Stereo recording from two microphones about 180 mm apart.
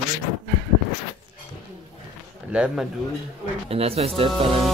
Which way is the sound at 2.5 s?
5° right (ahead or behind).